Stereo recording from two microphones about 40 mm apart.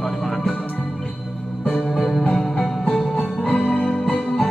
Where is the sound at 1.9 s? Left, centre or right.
Centre.